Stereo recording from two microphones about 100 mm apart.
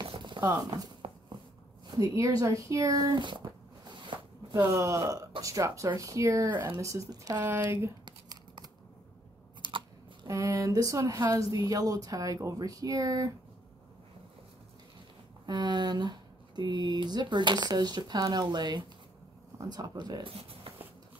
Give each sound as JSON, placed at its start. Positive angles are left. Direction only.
{"t": 0.0, "sound": "a sound", "side_deg": -55}
{"t": 0.4, "sound": "speech", "side_deg": -35}
{"t": 1.9, "sound": "a sound", "side_deg": -35}
{"t": 4.7, "sound": "speech", "side_deg": -30}
{"t": 7.5, "sound": "speech", "side_deg": -25}
{"t": 8.0, "sound": "a sound", "side_deg": -50}
{"t": 10.2, "sound": "speech", "side_deg": -35}
{"t": 15.4, "sound": "speech", "side_deg": -45}
{"t": 20.2, "sound": "speech", "side_deg": -70}